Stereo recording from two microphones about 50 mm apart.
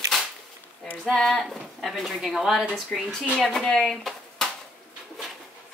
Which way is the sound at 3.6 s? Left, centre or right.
Centre.